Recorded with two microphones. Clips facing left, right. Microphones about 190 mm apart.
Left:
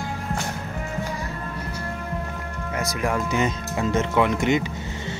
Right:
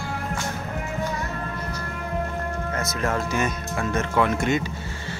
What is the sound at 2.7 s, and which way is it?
Speech, 15° left (ahead or behind).